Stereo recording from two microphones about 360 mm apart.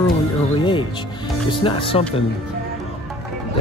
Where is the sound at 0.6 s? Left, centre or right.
Centre.